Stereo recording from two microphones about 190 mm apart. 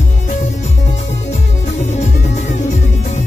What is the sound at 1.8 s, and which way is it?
Music, 40° left (ahead or behind).